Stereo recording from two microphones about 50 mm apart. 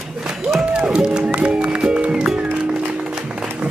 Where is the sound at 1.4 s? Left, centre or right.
Right.